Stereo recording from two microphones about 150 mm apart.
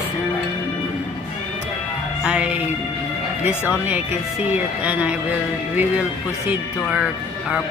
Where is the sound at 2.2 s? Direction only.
10° right (ahead or behind).